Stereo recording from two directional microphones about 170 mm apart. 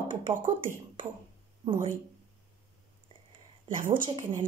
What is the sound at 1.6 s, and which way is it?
Speech, 30° right (ahead or behind).